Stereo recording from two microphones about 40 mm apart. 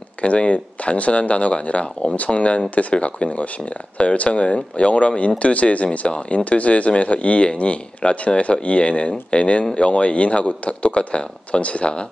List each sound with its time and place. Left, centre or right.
0.2 s speech: left